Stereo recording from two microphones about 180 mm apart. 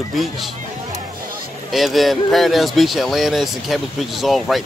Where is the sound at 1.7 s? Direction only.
Centre (ahead or behind).